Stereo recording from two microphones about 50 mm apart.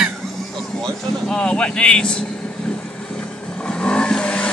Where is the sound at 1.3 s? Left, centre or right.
Centre.